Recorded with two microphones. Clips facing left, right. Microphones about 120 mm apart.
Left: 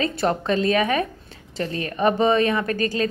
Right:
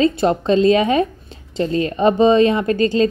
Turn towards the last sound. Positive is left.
turn(degrees=-25)  # may be behind; listen again after turning